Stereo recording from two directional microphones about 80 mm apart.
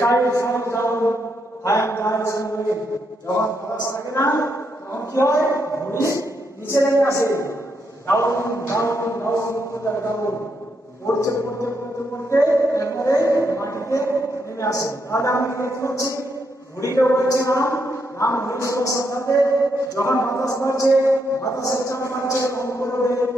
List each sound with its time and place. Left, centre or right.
0.0 s a sound: left
1.6 s a man's voice: left
3.8 s a man's voice: left